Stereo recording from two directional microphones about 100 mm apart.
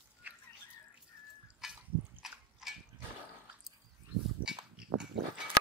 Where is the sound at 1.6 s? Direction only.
5° right (ahead or behind).